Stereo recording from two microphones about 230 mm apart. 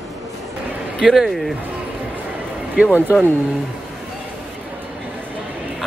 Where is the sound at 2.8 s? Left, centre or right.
Centre.